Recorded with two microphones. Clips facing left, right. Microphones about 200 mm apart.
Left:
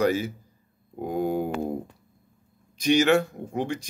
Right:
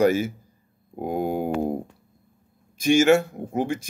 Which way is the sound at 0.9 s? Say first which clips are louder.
Right 1 dB; 50° right (ahead or behind).